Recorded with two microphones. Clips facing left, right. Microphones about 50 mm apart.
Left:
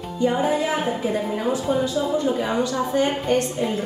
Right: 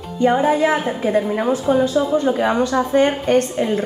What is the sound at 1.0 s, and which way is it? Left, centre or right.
A woman's voice, right.